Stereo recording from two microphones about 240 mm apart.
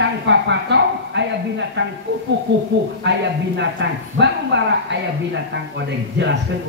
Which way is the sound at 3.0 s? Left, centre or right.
Right.